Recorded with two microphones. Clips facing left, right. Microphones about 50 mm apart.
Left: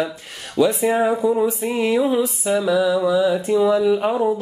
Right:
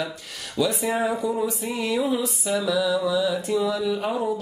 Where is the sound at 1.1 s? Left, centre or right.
Centre.